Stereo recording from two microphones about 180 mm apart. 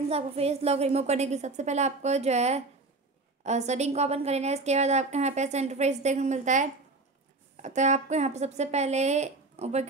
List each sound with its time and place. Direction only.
0.1 s a woman's voice: 35° right (ahead or behind)